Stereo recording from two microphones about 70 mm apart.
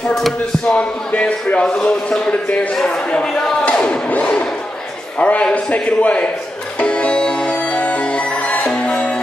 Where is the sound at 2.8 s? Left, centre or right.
Centre.